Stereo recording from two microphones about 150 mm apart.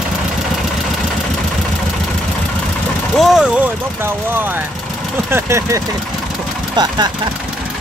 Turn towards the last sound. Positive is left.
turn(degrees=-25)  # may be behind; listen again after turning